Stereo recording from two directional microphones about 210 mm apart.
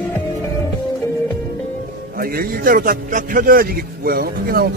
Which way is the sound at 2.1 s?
45° right (ahead or behind).